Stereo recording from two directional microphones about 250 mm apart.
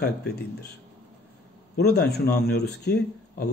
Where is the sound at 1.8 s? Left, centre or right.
Left.